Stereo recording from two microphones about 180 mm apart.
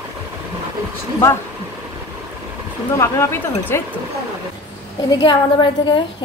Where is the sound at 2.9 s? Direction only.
15° left (ahead or behind).